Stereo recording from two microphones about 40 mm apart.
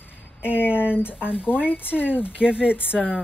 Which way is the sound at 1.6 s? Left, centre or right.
Left.